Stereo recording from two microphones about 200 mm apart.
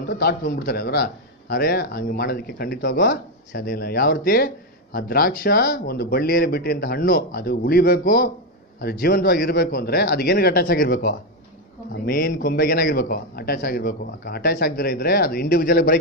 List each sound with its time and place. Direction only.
0.1 s a man's voice: 50° left (ahead or behind)